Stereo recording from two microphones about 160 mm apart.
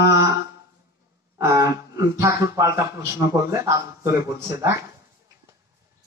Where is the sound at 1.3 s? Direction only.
20° right (ahead or behind).